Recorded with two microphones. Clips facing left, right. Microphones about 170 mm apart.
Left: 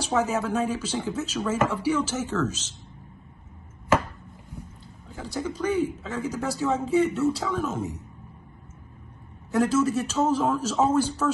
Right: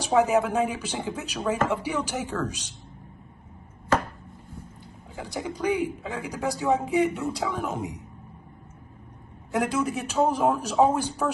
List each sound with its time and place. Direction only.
0.0 s a man's voice: 15° right (ahead or behind)
5.1 s a man's voice: 15° right (ahead or behind)
9.5 s a man's voice: 15° right (ahead or behind)